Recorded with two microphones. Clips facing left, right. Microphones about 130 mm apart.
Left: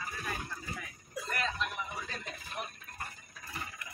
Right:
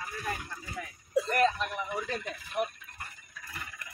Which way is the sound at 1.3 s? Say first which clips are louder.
Right 7 dB; 45° right (ahead or behind).